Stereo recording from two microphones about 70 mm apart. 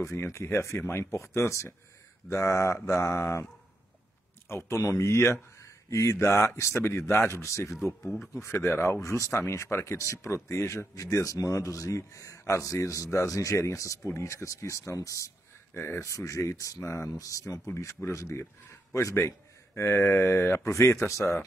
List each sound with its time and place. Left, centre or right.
0.2 s speech: left
4.5 s speech: left